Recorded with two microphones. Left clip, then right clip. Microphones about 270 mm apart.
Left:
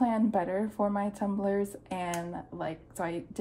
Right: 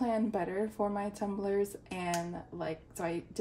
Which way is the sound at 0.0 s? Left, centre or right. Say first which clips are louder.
Left 4 dB; centre.